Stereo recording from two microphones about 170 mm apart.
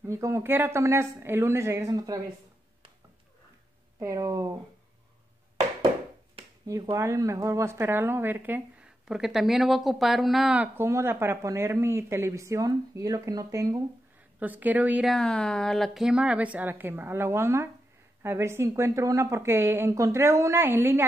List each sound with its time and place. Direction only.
0.0 s a woman's voice: 15° right (ahead or behind)
4.0 s a woman's voice: 20° right (ahead or behind)
6.4 s a sound: 35° right (ahead or behind)
6.7 s a woman's voice: 15° right (ahead or behind)